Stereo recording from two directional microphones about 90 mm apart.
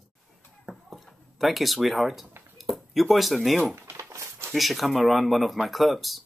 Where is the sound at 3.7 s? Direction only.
30° right (ahead or behind).